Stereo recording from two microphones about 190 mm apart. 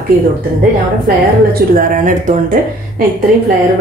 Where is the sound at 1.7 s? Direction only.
45° right (ahead or behind).